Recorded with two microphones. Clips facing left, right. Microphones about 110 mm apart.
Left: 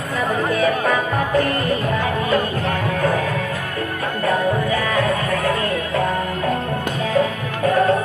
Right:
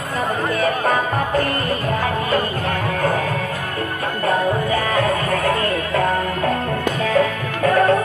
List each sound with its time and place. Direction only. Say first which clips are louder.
4.6 s music: right 1 dB; 45° right (ahead or behind)